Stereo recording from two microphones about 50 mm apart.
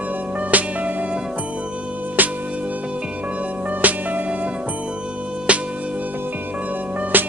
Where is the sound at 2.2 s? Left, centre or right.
Right.